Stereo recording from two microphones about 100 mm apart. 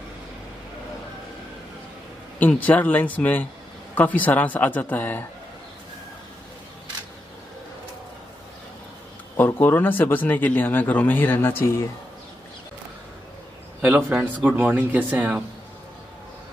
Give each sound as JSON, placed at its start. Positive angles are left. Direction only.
{"t": 2.3, "sound": "speech", "side_deg": 15}
{"t": 9.4, "sound": "speech", "side_deg": 20}
{"t": 13.7, "sound": "speech", "side_deg": -15}